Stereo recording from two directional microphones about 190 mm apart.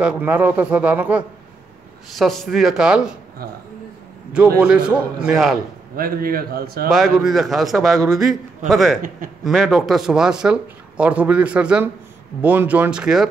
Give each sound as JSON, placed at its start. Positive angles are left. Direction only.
{"t": 0.0, "sound": "speech", "side_deg": -5}
{"t": 4.6, "sound": "speech", "side_deg": -5}
{"t": 5.9, "sound": "a man's voice", "side_deg": -50}
{"t": 6.9, "sound": "speech", "side_deg": 0}